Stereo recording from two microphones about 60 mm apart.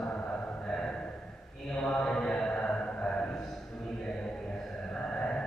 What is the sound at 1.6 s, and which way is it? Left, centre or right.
Mantra, centre.